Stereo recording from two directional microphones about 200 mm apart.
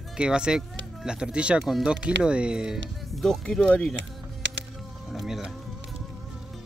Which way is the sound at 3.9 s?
65° right (ahead or behind).